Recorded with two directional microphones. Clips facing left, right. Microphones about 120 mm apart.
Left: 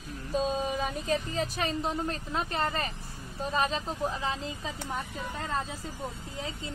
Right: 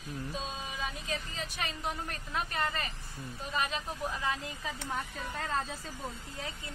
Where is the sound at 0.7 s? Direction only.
40° left (ahead or behind).